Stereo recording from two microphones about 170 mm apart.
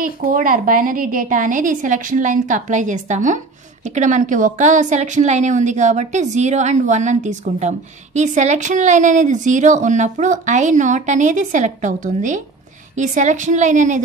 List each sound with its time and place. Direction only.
0.0 s a woman's voice: 55° right (ahead or behind)